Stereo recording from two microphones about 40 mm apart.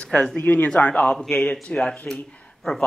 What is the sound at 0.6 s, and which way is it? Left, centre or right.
Speech, left.